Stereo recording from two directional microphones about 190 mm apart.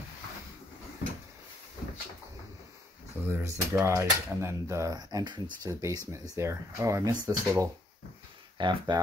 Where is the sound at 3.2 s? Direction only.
15° right (ahead or behind).